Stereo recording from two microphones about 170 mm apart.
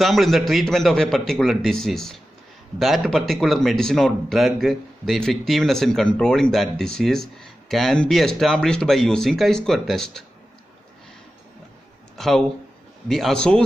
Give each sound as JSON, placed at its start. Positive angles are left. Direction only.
{"t": 0.0, "sound": "speech", "side_deg": 0}
{"t": 12.2, "sound": "speech", "side_deg": 0}